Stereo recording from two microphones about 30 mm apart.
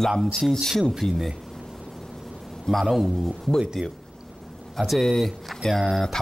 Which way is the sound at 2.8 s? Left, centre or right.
Centre.